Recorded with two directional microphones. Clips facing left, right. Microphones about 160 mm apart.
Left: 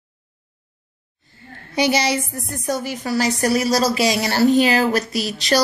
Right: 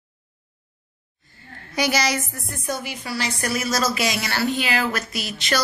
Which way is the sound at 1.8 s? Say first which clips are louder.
Left 4 dB; 30° left (ahead or behind).